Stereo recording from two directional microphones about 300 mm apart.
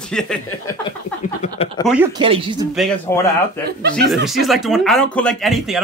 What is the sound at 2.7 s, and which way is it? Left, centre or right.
Speech, centre.